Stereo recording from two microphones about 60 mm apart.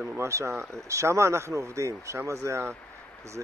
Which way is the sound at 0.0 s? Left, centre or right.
Right.